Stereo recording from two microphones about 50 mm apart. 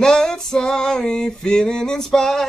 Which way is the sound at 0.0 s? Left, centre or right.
Centre.